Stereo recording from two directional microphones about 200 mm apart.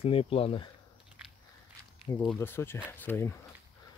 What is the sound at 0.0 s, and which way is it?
Speech, 30° left (ahead or behind).